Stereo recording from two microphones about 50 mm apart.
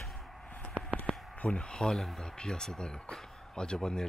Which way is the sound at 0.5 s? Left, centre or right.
Left.